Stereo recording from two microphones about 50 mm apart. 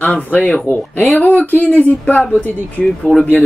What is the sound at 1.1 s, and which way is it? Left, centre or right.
Speech, left.